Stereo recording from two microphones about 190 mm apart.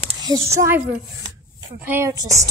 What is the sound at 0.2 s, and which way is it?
Speech, 20° right (ahead or behind).